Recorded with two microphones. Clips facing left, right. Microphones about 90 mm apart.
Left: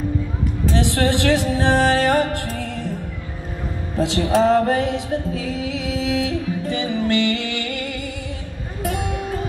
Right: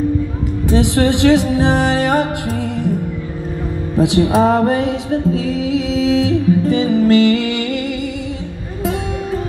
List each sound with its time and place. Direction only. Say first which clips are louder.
0.7 s speech: right 5 dB; 15° right (ahead or behind)
4.0 s music: right 4 dB; 15° right (ahead or behind)